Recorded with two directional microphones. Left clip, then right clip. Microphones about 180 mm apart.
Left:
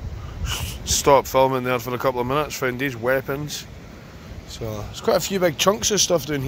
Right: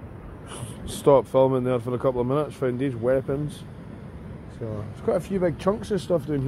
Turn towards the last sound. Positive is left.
turn(degrees=15)  # may be behind; listen again after turning